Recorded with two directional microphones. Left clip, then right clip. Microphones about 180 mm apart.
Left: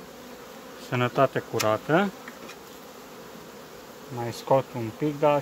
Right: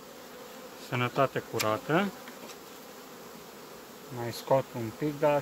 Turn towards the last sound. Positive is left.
turn(degrees=20)  # may be behind; listen again after turning